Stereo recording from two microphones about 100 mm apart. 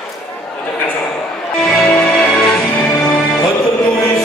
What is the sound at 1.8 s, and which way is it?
Music, 5° left (ahead or behind).